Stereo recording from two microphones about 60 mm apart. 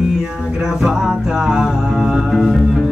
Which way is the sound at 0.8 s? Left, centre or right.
Centre.